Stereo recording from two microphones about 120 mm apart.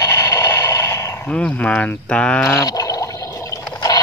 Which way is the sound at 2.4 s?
30° left (ahead or behind).